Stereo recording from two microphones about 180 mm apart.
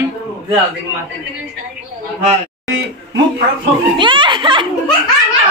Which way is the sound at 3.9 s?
25° right (ahead or behind).